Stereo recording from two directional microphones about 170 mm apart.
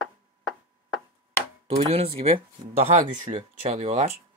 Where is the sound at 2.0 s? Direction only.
35° right (ahead or behind).